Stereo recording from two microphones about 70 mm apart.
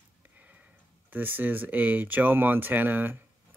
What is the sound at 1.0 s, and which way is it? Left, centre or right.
Speech, right.